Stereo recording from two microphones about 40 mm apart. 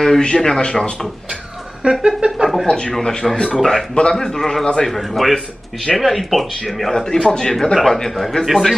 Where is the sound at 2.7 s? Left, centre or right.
Left.